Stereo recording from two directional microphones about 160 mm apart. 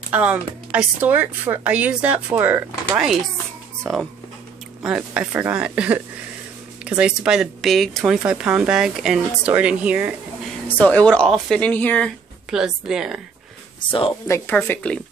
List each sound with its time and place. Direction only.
0.1 s speech: 10° right (ahead or behind)
10.8 s speech: 10° left (ahead or behind)
12.4 s speech: 5° right (ahead or behind)
13.7 s speech: 30° left (ahead or behind)
14.2 s speech: 15° left (ahead or behind)